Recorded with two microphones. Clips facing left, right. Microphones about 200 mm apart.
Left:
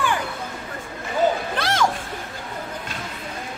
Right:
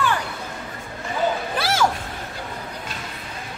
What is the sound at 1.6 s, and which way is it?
Music, 5° right (ahead or behind).